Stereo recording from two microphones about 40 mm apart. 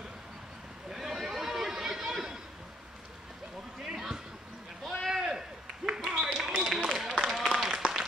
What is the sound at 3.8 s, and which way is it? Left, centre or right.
Basketball bounce, centre.